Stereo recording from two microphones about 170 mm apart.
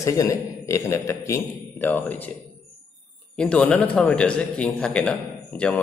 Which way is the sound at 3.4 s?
5° left (ahead or behind).